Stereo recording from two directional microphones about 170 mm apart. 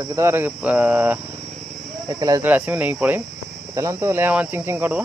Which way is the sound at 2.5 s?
10° right (ahead or behind).